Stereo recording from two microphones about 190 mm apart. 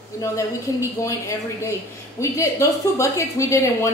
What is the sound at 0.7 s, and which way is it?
Speech, 15° left (ahead or behind).